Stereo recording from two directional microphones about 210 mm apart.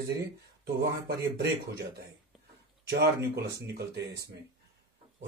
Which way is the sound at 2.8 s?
50° right (ahead or behind).